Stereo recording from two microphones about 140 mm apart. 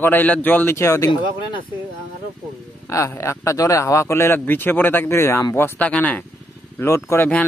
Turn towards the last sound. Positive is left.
turn(degrees=15)  # may be behind; listen again after turning